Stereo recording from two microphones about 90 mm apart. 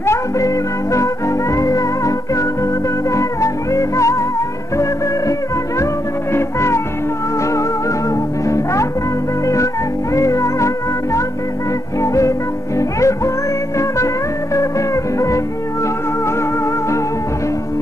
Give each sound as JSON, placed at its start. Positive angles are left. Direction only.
{"t": 0.0, "sound": "music", "side_deg": 30}
{"t": 1.6, "sound": "music", "side_deg": 40}
{"t": 3.2, "sound": "music", "side_deg": 35}
{"t": 6.3, "sound": "music", "side_deg": 30}
{"t": 10.1, "sound": "music", "side_deg": 35}
{"t": 12.0, "sound": "music", "side_deg": 35}
{"t": 15.1, "sound": "music", "side_deg": 35}